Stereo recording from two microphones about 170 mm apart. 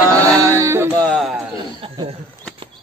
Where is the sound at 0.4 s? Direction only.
15° right (ahead or behind).